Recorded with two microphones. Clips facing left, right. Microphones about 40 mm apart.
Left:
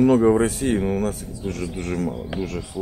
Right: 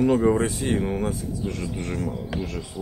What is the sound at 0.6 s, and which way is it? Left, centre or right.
Speech, centre.